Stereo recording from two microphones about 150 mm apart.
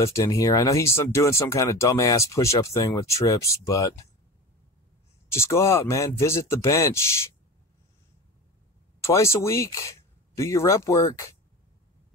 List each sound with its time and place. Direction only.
0.0 s speech: 20° left (ahead or behind)
5.3 s speech: 20° left (ahead or behind)
9.0 s speech: 20° left (ahead or behind)